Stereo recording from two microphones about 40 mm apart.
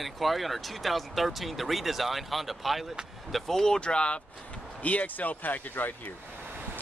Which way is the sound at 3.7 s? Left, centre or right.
Left.